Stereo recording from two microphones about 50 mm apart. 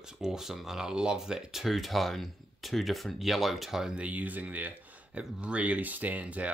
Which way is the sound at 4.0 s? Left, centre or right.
Right.